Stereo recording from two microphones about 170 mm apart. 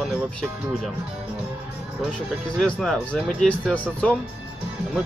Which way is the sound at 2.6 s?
Centre (ahead or behind).